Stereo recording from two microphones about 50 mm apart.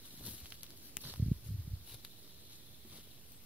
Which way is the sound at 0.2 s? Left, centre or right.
Right.